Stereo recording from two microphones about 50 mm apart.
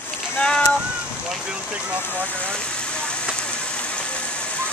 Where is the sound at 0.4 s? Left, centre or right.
Left.